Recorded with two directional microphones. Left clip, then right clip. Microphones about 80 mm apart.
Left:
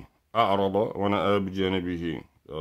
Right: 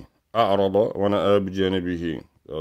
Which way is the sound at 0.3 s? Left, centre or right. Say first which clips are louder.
Right 4 dB; right.